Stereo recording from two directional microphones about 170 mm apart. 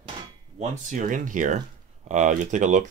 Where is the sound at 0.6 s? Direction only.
45° right (ahead or behind).